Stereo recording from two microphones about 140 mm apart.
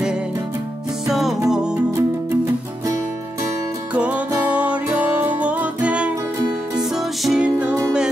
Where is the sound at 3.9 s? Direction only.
10° right (ahead or behind).